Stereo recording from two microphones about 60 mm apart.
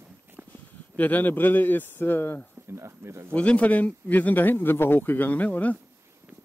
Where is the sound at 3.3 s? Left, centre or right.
Left.